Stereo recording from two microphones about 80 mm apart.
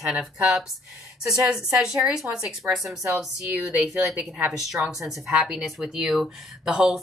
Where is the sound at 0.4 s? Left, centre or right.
Centre.